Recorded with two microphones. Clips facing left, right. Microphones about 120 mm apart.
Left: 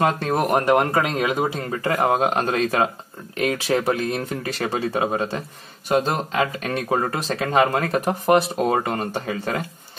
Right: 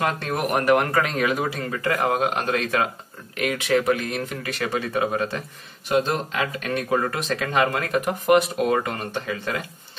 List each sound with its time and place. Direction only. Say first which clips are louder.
0.0 s speech: left 4 dB; 30° left (ahead or behind)
1.8 s speech: left 3 dB; 35° left (ahead or behind)
5.9 s speech: left 1 dB; 40° left (ahead or behind)